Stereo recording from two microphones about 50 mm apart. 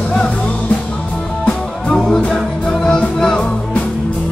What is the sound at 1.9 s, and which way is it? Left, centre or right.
Music, centre.